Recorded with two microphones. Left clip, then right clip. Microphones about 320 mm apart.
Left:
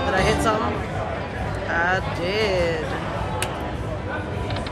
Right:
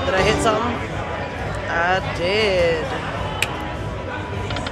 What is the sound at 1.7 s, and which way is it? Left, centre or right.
Speech, centre.